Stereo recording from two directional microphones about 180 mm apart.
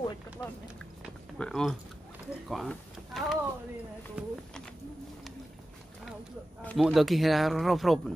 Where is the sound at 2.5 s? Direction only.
Centre (ahead or behind).